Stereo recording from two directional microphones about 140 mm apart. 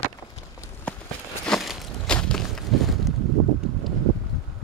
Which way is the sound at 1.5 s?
Centre (ahead or behind).